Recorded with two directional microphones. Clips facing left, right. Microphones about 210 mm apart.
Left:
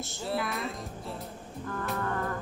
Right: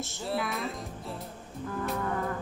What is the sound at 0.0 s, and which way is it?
Speech, centre (ahead or behind).